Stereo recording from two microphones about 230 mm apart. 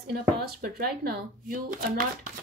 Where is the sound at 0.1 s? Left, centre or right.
Right.